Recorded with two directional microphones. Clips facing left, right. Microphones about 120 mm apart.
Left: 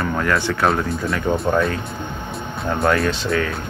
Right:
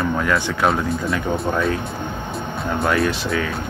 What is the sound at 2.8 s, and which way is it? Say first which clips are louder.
Speech: left 1 dB; centre (ahead or behind).